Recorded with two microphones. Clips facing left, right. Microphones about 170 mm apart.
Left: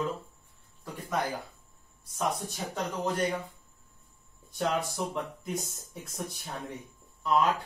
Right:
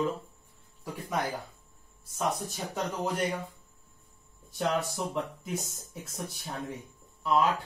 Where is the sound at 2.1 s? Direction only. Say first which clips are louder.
Even; centre (ahead or behind).